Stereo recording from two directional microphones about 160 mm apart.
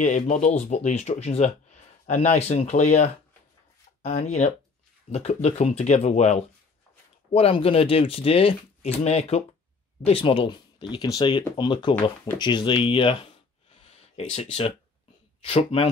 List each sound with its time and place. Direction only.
0.0 s speech: 50° left (ahead or behind); by 13.3 s 30° left (ahead or behind)
13.8 s a sound: 40° left (ahead or behind)
15.4 s speech: 35° left (ahead or behind)